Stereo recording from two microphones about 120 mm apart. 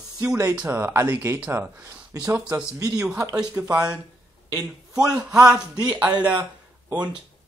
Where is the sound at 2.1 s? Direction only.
25° right (ahead or behind).